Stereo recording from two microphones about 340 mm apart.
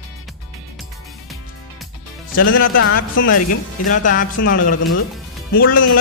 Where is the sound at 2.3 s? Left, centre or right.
Left.